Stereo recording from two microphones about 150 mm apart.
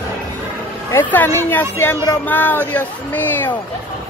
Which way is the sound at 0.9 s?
15° left (ahead or behind).